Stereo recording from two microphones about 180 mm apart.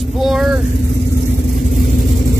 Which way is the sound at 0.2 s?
Centre (ahead or behind).